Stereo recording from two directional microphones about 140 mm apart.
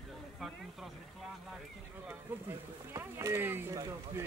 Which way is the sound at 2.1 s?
20° right (ahead or behind).